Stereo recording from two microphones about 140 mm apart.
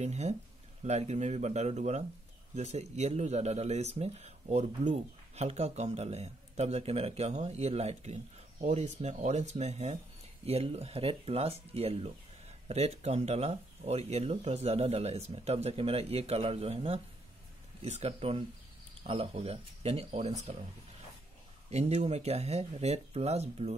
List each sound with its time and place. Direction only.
0.0 s speech: 55° right (ahead or behind)
21.6 s speech: 50° right (ahead or behind)